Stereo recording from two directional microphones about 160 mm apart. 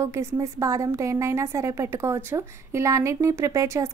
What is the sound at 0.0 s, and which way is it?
A woman's voice, 15° right (ahead or behind).